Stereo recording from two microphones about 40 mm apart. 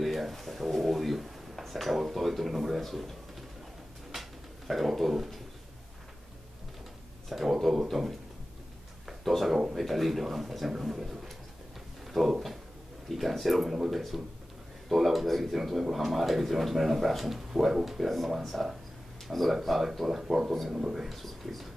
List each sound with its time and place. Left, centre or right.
0.0 s a sound: centre
1.6 s speech: centre
4.1 s dog: centre
7.2 s speech: centre
9.0 s a sound: centre
9.8 s speech: centre